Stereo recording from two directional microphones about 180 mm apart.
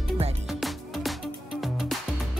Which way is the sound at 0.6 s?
Centre (ahead or behind).